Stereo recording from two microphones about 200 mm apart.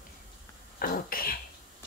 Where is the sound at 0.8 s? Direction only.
45° left (ahead or behind).